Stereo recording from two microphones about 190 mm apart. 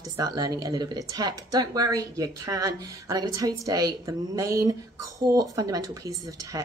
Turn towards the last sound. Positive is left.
turn(degrees=-15)  # may be behind; listen again after turning